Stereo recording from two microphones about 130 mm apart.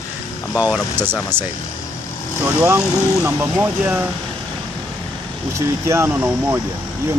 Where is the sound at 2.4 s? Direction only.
20° right (ahead or behind).